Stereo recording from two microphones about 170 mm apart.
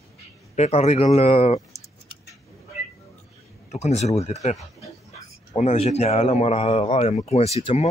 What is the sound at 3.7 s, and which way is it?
Speech, 40° left (ahead or behind).